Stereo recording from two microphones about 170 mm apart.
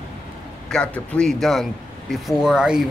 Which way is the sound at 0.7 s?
5° left (ahead or behind).